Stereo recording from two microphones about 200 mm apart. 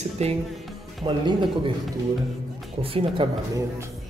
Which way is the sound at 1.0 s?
25° right (ahead or behind).